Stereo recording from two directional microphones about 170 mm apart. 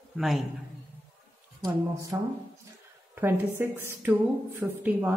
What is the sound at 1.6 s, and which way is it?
Speech, 20° right (ahead or behind).